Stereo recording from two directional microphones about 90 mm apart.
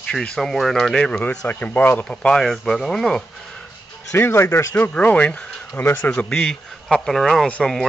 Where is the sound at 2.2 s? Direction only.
5° left (ahead or behind).